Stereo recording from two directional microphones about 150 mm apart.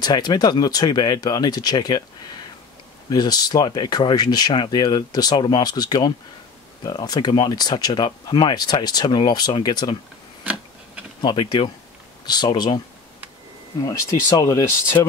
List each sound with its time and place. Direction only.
0.0 s speech: 25° left (ahead or behind)
3.1 s speech: 25° left (ahead or behind)
10.4 s a sound: 10° right (ahead or behind)
11.1 s speech: 30° left (ahead or behind)